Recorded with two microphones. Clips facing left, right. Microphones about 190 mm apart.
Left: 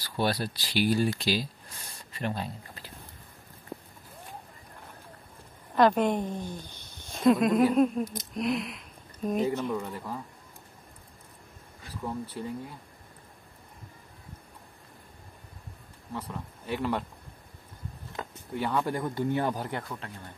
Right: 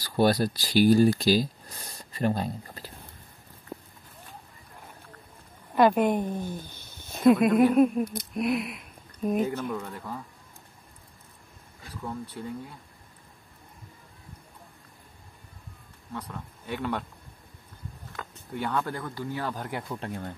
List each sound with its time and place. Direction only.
0.0 s speech: 40° right (ahead or behind)
5.8 s a woman's voice: 5° right (ahead or behind)
12.0 s speech: 5° left (ahead or behind)
16.1 s speech: 5° left (ahead or behind)
18.2 s a sound: 25° left (ahead or behind)
18.5 s speech: 5° left (ahead or behind); by 19.5 s 20° left (ahead or behind)